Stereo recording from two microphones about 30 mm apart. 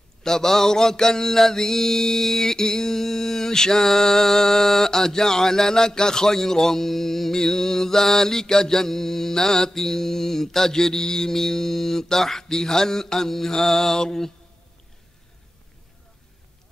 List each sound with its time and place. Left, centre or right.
0.2 s mantra: centre